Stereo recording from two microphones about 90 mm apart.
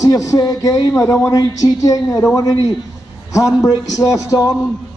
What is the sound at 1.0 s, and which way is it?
A man's voice, 30° left (ahead or behind).